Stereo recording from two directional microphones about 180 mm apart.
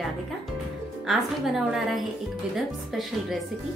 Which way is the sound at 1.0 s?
Centre (ahead or behind).